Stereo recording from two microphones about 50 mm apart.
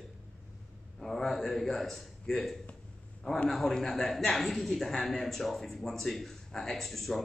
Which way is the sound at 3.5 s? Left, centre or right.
Centre.